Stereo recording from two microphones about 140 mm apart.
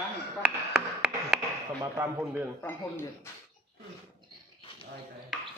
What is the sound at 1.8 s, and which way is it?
Speech, 20° right (ahead or behind).